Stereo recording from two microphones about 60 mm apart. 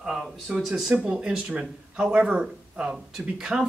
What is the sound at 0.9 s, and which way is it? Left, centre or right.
Speech, centre.